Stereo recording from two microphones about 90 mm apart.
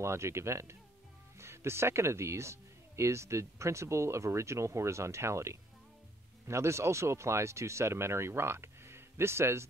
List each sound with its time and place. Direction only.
0.0 s speech: 30° right (ahead or behind)